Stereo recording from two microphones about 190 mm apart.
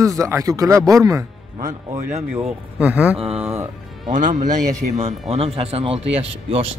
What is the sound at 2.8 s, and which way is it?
Speech, 5° right (ahead or behind).